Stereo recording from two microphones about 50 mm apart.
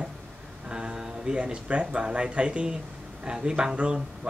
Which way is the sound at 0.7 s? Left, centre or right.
Centre.